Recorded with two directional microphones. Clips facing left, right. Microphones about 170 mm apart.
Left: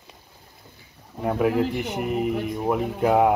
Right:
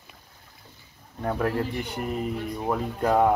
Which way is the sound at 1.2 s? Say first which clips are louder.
Left 5 dB; 10° left (ahead or behind).